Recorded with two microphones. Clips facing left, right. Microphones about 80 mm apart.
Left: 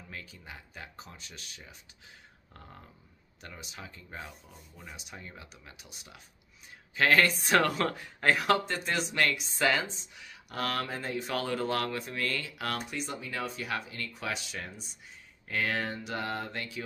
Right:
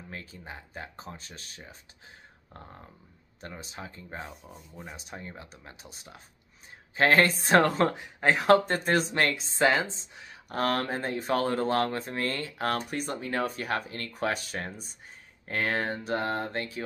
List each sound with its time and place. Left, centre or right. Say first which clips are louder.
0.1 s speech: right 3 dB; right
3.3 s speech: right 4 dB; right
8.5 s speech: right 6 dB; right